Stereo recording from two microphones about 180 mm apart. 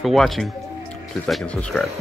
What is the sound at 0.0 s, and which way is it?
Speech, centre (ahead or behind).